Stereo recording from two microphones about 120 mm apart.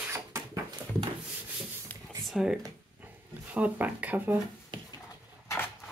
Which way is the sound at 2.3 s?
5° right (ahead or behind).